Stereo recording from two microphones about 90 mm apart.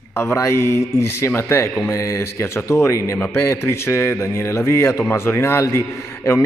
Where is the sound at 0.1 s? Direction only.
30° left (ahead or behind).